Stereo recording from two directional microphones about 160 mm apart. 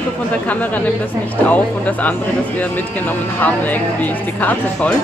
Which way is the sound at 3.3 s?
10° left (ahead or behind).